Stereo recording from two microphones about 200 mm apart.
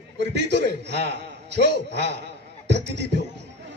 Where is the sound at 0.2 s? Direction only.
60° right (ahead or behind).